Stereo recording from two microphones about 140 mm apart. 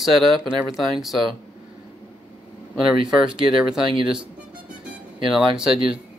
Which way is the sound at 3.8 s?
40° right (ahead or behind).